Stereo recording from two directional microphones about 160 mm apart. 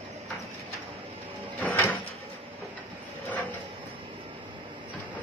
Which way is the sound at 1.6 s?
15° left (ahead or behind).